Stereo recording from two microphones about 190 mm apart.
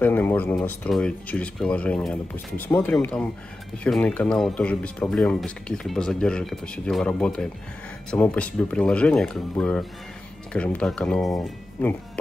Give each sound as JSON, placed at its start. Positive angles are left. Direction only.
{"t": 0.0, "sound": "speech", "side_deg": 10}